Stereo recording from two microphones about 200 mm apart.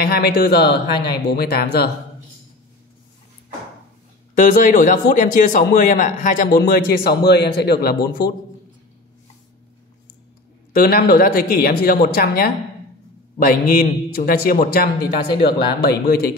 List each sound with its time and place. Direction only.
0.0 s a man's voice: 50° left (ahead or behind)
4.4 s a man's voice: 40° left (ahead or behind)
10.7 s a man's voice: 50° left (ahead or behind)